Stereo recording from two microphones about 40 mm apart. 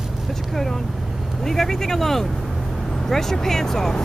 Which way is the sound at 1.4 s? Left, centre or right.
Centre.